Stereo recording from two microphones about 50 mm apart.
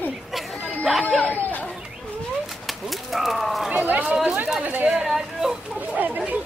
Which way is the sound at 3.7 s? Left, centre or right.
Right.